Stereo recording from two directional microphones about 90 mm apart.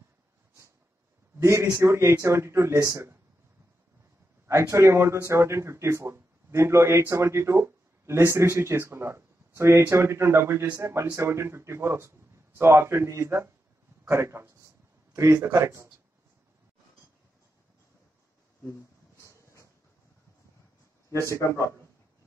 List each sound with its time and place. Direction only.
1.4 s a man's voice: 30° right (ahead or behind)
4.5 s a man's voice: 30° right (ahead or behind)
19.2 s a sound: 35° left (ahead or behind)
21.3 s speech: 30° left (ahead or behind)